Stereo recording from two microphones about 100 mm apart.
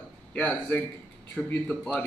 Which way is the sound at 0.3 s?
15° left (ahead or behind).